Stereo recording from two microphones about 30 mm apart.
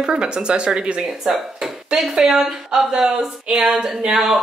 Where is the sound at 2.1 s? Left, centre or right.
Centre.